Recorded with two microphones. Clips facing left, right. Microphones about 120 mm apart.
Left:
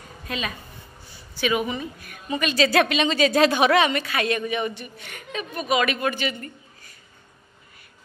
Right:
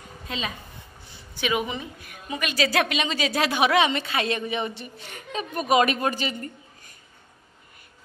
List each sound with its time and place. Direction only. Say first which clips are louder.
1.4 s a woman's voice: left 2 dB; 20° right (ahead or behind)